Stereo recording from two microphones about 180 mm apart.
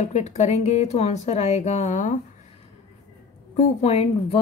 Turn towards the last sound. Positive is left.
turn(degrees=35)  # may be behind; listen again after turning